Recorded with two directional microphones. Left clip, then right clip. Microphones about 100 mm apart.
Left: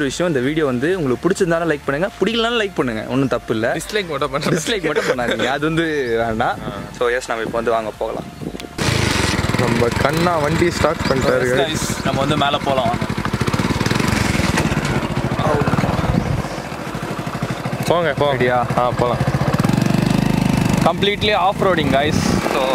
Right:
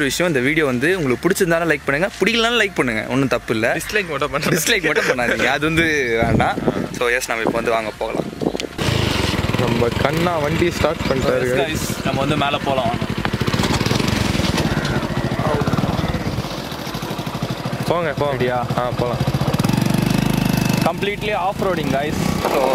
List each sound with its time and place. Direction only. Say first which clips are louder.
0.0 s speech: right 1 dB; 10° right (ahead or behind)
5.5 s speech: right 2 dB; 5° right (ahead or behind)
8.8 s vehicle: left 3 dB; 10° left (ahead or behind)
11.1 s speech: left 2 dB; centre (ahead or behind)
14.0 s lawn mower: left 2 dB; 20° left (ahead or behind)
17.9 s speech: left 4 dB; 15° left (ahead or behind)
21.0 s speech: left 4 dB; 45° left (ahead or behind)